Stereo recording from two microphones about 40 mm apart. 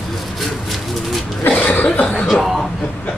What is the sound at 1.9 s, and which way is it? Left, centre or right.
Chuckle, left.